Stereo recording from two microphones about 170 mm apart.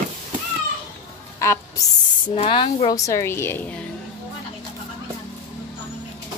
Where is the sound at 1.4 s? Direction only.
20° left (ahead or behind).